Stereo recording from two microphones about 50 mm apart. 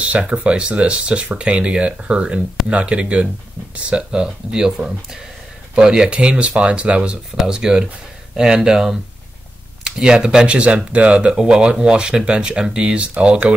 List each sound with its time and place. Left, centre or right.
0.3 s speech: right
7.3 s speech: centre